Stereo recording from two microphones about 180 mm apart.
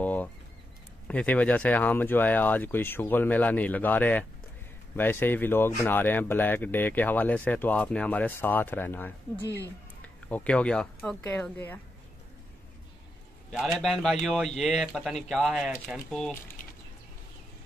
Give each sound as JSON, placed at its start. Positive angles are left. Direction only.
{"t": 0.0, "sound": "a sound", "side_deg": 10}
{"t": 1.0, "sound": "speech", "side_deg": 10}
{"t": 13.5, "sound": "speech", "side_deg": 0}